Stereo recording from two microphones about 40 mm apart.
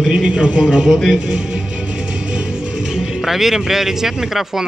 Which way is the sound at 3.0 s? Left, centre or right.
Centre.